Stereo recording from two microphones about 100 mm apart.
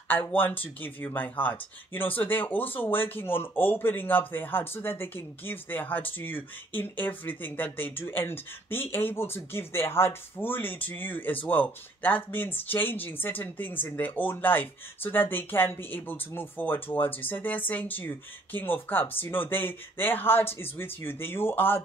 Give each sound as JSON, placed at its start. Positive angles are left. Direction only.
{"t": 0.1, "sound": "speech", "side_deg": 20}